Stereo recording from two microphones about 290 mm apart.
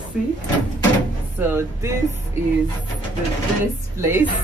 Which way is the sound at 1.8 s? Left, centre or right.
Centre.